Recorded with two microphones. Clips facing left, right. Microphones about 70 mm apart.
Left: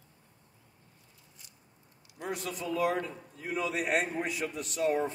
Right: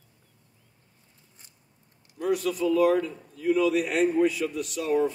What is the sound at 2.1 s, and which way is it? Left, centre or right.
A man's voice, left.